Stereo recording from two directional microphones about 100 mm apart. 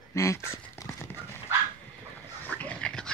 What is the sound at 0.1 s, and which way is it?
Dog, 30° left (ahead or behind).